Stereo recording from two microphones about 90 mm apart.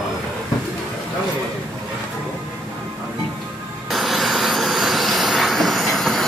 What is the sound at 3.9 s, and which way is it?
Vehicle, centre (ahead or behind).